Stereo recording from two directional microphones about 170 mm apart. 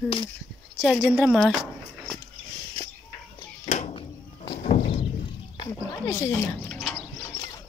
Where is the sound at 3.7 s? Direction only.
40° left (ahead or behind).